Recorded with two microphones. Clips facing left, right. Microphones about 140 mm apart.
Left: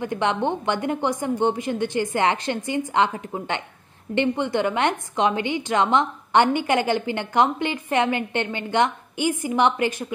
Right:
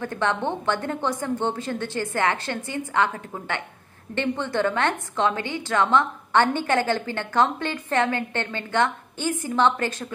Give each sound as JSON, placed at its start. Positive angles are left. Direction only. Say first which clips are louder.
{"t": 0.0, "sound": "a woman's voice", "louder": "left 2 dB", "side_deg": 15}